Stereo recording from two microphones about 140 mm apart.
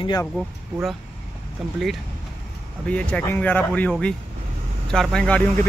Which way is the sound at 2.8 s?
10° left (ahead or behind).